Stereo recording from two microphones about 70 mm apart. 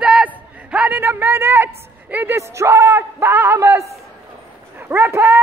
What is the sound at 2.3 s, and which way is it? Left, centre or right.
A man's voice, right.